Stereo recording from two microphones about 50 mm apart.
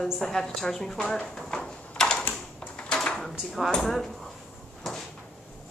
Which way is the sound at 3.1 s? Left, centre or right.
Centre.